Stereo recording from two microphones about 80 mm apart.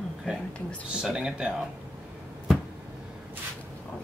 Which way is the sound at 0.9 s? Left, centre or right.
Centre.